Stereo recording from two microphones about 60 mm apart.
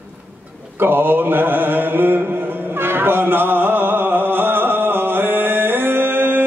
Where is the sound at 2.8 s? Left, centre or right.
Right.